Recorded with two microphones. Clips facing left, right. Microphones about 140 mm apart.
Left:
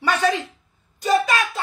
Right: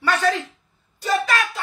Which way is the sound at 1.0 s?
20° left (ahead or behind).